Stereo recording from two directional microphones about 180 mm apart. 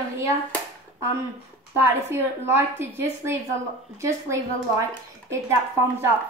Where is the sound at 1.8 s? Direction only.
10° right (ahead or behind).